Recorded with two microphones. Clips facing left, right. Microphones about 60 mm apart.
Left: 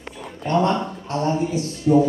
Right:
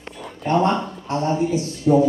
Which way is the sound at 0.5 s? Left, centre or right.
Right.